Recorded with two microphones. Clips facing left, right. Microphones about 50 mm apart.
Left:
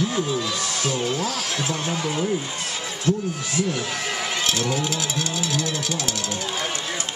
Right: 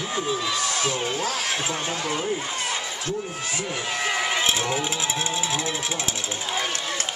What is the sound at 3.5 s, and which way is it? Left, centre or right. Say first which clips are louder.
Speech: left 3 dB; centre.